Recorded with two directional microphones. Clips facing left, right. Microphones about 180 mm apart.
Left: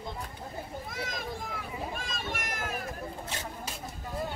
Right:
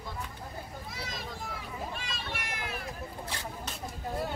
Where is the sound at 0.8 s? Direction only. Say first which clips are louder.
Left 3 dB; 50° left (ahead or behind).